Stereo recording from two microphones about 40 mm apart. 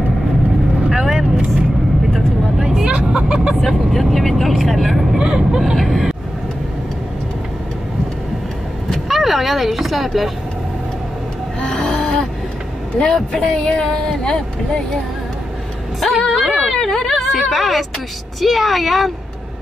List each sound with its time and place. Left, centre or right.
0.8 s vehicle: centre
3.1 s speech: right
3.6 s speech: centre
5.2 s speech: right
5.8 s speech: centre
9.1 s speech: centre
11.6 s a sound: centre
12.9 s speech: centre
16.0 s music: centre
16.5 s a sound: centre
18.4 s speech: centre